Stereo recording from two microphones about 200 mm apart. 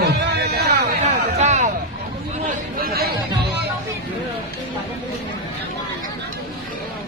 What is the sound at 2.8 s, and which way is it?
Chatter, 50° right (ahead or behind).